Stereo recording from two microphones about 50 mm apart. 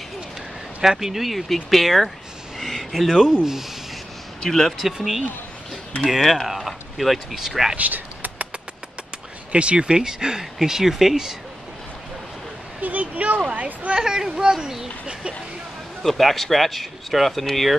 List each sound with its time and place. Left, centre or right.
0.8 s speech: centre
2.6 s a sound: centre
4.4 s speech: centre
4.7 s speech: centre
7.7 s a sound: right
9.5 s speech: right
12.8 s speech: right
13.9 s speech: centre
16.0 s speech: centre